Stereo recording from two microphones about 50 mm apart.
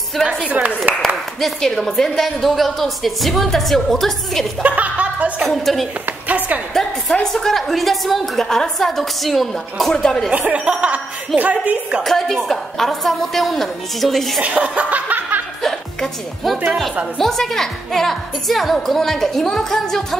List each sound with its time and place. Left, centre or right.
0.5 s speech: right
1.0 s a woman's voice: centre
4.6 s speech: right
5.4 s a woman's voice: centre
6.0 s a woman's voice: right
6.7 s a woman's voice: centre
9.9 s a woman's voice: centre
10.3 s a woman's voice: right
12.0 s a woman's voice: centre
14.4 s laughter: right
15.6 s a woman's voice: centre